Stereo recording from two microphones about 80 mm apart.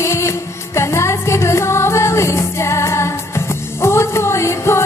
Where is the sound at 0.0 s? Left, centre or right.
Left.